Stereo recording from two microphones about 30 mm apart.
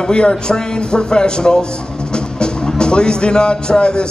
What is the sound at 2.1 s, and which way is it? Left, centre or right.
Music, left.